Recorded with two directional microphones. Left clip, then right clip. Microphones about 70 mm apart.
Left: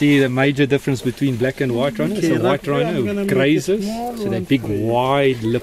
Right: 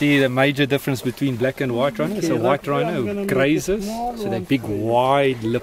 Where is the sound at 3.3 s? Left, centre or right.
Right.